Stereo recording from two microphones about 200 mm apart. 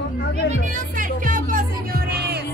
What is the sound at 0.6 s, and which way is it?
Music, 40° right (ahead or behind).